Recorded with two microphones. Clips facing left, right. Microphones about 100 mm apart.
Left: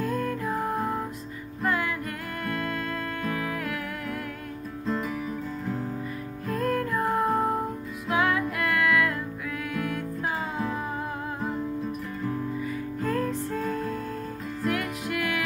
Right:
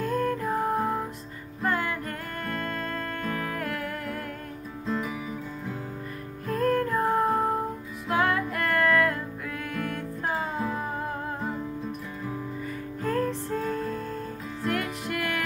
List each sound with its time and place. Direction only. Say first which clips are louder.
0.0 s music: right 1 dB; 50° right (ahead or behind)
0.4 s music: right 2 dB; centre (ahead or behind)
1.7 s music: even; 40° right (ahead or behind)
4.8 s music: left 1 dB; centre (ahead or behind)
6.5 s music: right 2 dB; 35° right (ahead or behind)
7.2 s music: left 2 dB; centre (ahead or behind)
8.2 s music: even; 40° right (ahead or behind)
9.8 s music: left 1 dB; centre (ahead or behind)
12.6 s music: left 2 dB; 40° right (ahead or behind)
14.7 s music: even; 45° right (ahead or behind)